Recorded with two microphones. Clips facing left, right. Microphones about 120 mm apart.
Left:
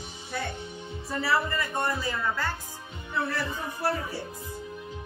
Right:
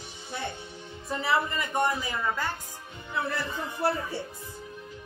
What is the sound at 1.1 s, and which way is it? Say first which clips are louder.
A woman's voice: even; 20° right (ahead or behind).